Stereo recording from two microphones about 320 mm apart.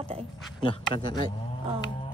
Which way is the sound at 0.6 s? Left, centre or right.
Centre.